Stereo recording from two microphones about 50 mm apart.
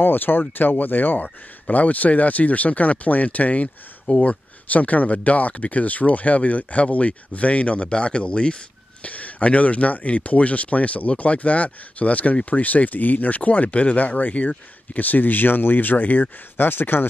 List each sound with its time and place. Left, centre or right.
0.0 s speech: left
16.5 s speech: left